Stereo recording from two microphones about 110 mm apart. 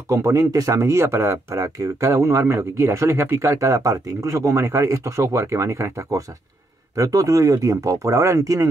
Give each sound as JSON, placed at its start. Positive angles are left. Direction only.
{"t": 0.1, "sound": "speech", "side_deg": -30}